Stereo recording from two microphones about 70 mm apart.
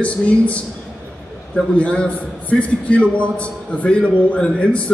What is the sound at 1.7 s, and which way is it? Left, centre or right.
A man's voice, centre.